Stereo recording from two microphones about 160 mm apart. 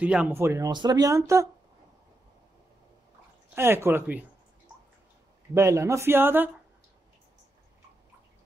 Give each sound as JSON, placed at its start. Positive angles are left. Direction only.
{"t": 0.0, "sound": "speech", "side_deg": -10}
{"t": 3.5, "sound": "speech", "side_deg": -15}
{"t": 5.5, "sound": "speech", "side_deg": -20}